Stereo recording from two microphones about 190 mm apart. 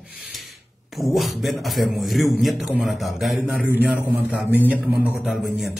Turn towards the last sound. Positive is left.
turn(degrees=0)  # may be behind; listen again after turning